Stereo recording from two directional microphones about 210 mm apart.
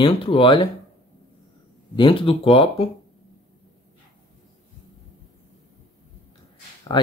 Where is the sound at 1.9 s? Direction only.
25° left (ahead or behind).